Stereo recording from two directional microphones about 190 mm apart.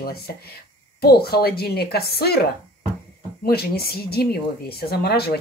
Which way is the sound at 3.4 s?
55° left (ahead or behind).